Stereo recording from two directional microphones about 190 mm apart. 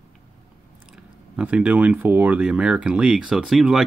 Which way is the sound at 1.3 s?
5° right (ahead or behind).